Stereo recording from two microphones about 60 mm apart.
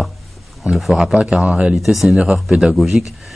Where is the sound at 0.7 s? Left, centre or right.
Centre.